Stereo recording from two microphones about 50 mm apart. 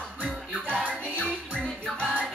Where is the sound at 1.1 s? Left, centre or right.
Left.